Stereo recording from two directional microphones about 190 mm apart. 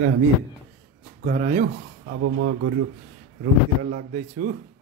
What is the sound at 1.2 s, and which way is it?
Speech, 50° right (ahead or behind).